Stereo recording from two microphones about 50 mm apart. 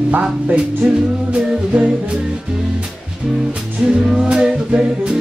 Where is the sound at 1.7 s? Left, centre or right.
Right.